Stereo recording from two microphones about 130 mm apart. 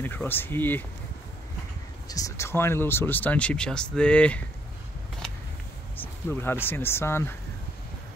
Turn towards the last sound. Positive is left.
turn(degrees=20)  # may be behind; listen again after turning